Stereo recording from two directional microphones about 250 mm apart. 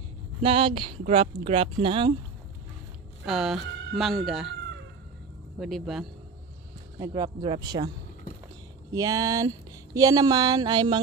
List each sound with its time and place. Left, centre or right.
0.4 s speech: right
3.3 s speech: centre
5.6 s speech: centre
7.0 s speech: centre
8.9 s speech: centre